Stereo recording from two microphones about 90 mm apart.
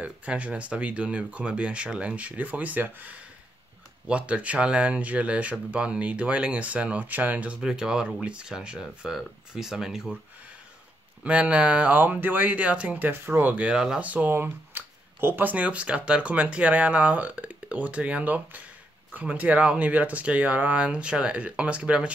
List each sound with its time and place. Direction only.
0.0 s speech: 15° right (ahead or behind)
11.2 s speech: 15° right (ahead or behind)